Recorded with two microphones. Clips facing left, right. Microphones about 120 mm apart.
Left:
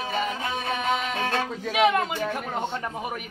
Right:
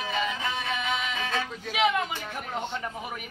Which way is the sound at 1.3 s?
55° left (ahead or behind).